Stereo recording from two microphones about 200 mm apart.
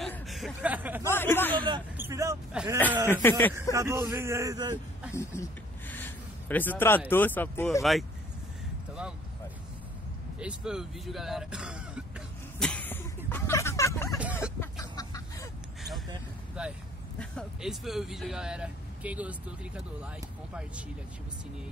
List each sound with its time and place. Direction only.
0.0 s a sound: centre (ahead or behind)
1.0 s speech: 10° left (ahead or behind)
2.0 s speech: 15° right (ahead or behind)
3.1 s speech: 10° left (ahead or behind)
3.7 s a man's voice: 15° right (ahead or behind)
5.1 s a sound: 15° left (ahead or behind)
7.1 s speech: 10° left (ahead or behind)
10.4 s speech: 5° right (ahead or behind)
12.5 s a sound: 5° left (ahead or behind)
14.6 s chicken: 15° left (ahead or behind)
17.2 s speech: centre (ahead or behind)